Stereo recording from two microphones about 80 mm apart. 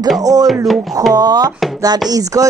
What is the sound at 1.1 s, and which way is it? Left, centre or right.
Speech, right.